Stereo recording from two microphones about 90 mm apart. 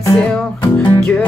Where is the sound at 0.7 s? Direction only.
15° left (ahead or behind).